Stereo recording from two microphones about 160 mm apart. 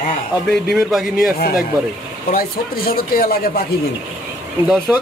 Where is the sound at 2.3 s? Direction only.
70° left (ahead or behind).